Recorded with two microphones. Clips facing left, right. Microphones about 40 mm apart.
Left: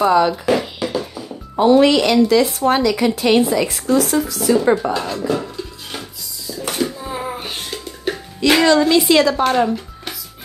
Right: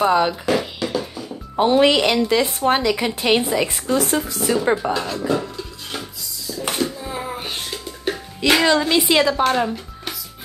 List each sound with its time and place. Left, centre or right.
0.0 s a woman's voice: centre
0.3 s speech: centre
0.8 s music: centre
1.6 s a woman's voice: right
4.9 s speech: centre
5.3 s dishes: centre
6.8 s a sound: centre
8.6 s a woman's voice: centre
9.3 s speech: centre